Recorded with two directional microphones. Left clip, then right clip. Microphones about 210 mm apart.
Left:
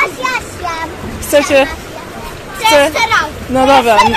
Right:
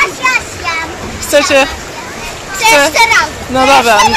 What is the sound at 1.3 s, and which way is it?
Speech, 20° left (ahead or behind).